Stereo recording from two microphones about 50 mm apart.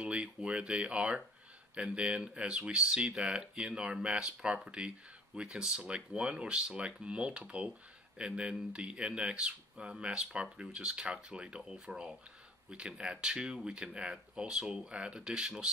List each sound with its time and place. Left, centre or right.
0.0 s speech: right